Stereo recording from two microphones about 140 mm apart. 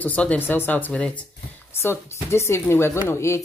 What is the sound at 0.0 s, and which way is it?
A woman's voice, 10° left (ahead or behind).